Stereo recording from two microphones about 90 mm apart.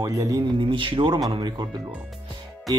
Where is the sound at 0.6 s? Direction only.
70° right (ahead or behind).